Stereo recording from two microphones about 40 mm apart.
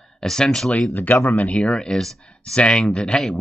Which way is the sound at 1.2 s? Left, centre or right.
Left.